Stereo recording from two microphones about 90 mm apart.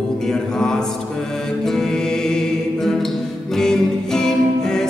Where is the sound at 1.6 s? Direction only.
5° left (ahead or behind).